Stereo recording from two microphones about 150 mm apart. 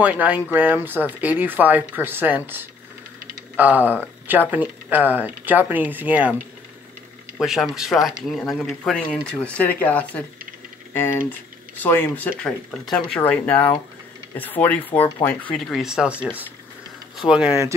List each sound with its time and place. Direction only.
0.0 s speech: 10° right (ahead or behind)
17.3 s speech: 5° right (ahead or behind)